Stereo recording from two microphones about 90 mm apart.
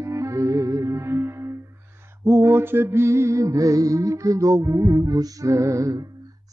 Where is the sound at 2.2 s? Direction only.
30° right (ahead or behind).